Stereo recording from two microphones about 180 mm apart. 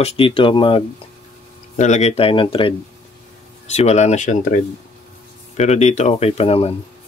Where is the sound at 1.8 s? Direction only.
40° left (ahead or behind).